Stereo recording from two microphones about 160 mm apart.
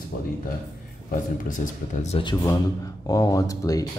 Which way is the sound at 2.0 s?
35° left (ahead or behind).